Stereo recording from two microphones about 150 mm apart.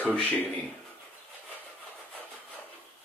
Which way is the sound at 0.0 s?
10° left (ahead or behind).